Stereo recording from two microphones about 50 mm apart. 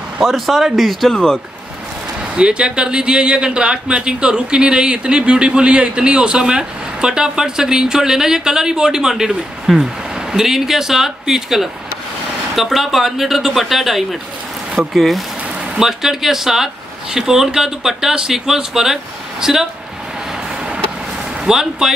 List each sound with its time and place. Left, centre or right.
0.2 s speech: centre
1.1 s speech: centre
2.3 s a man's voice: centre
21.5 s a man's voice: centre